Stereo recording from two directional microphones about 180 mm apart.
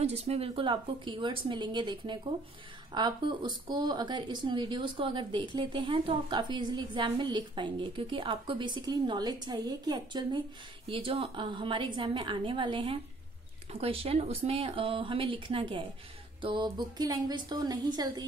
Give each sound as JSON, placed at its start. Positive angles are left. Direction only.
{"t": 0.0, "sound": "speech", "side_deg": -35}